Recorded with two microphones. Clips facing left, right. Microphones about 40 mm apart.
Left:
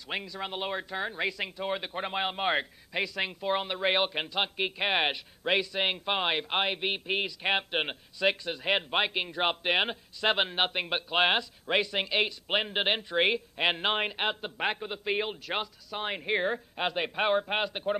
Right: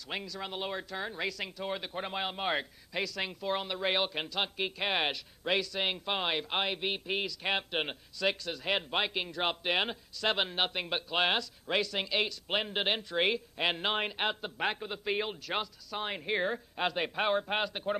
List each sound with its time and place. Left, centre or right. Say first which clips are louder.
0.1 s speech: left 3 dB; left